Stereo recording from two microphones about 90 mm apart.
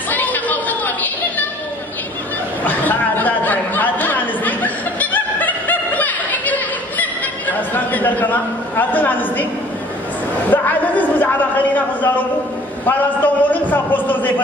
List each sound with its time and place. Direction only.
0.1 s chatter: 20° left (ahead or behind)
2.6 s a sound: 20° left (ahead or behind)
10.5 s a man's voice: 20° left (ahead or behind)